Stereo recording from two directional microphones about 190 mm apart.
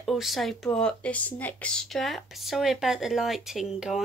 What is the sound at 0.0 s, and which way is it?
A woman's voice, centre (ahead or behind).